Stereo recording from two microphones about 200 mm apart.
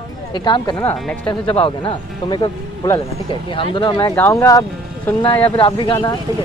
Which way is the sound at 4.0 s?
10° left (ahead or behind).